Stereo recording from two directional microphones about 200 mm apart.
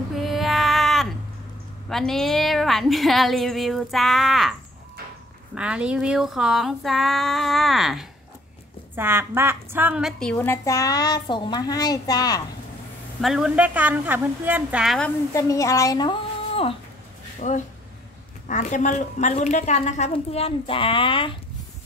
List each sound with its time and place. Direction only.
0.1 s a sound: centre (ahead or behind)
1.9 s a woman's voice: centre (ahead or behind)
8.9 s a woman's voice: 10° right (ahead or behind); by 12.4 s 20° left (ahead or behind)
13.2 s a woman's voice: 5° right (ahead or behind)
15.3 s speech: 15° left (ahead or behind)
17.4 s a woman's voice: 35° left (ahead or behind)